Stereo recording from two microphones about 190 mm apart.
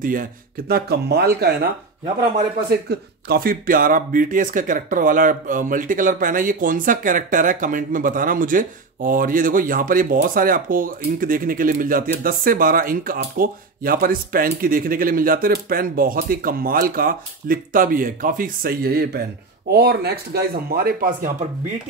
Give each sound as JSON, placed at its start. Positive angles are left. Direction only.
{"t": 0.0, "sound": "speech", "side_deg": -45}
{"t": 2.9, "sound": "speech", "side_deg": -55}